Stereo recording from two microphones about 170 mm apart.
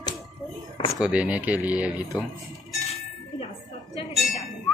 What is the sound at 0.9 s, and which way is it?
Speech, 5° right (ahead or behind).